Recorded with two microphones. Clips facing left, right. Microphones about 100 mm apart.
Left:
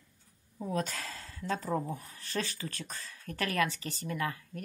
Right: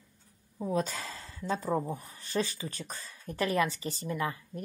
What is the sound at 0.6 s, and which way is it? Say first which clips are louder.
Speech: right 3 dB; 10° right (ahead or behind).